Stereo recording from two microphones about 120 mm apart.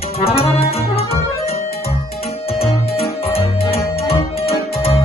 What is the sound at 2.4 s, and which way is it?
Music, 55° left (ahead or behind).